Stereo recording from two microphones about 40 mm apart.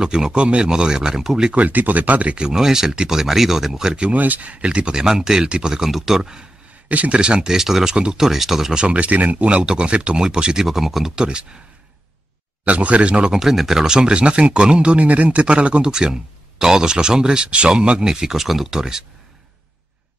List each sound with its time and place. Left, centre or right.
0.0 s speech: centre
1.5 s speech: right
2.3 s speech: centre
4.1 s speech: right; by 6.4 s centre
6.9 s speech: right
7.2 s speech: centre
7.9 s speech: right
8.2 s speech: centre
8.7 s speech: right
10.6 s speech: centre
11.1 s speech: right
12.6 s speech: right
13.3 s speech: centre
15.0 s speech: right; by 19.0 s centre